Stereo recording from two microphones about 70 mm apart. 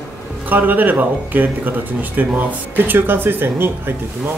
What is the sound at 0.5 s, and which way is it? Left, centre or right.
Speech, right.